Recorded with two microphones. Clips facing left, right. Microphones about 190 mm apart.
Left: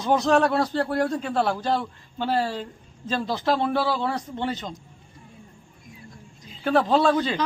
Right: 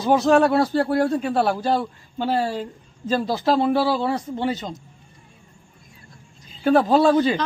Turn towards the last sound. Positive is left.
turn(degrees=-5)  # may be behind; listen again after turning